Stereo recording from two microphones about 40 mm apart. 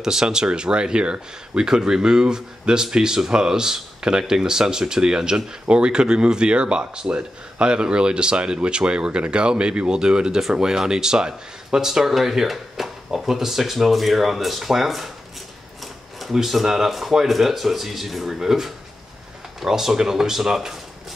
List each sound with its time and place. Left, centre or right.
0.0 s speech: centre
12.0 s speech: centre
15.8 s a sound: centre
16.6 s speech: centre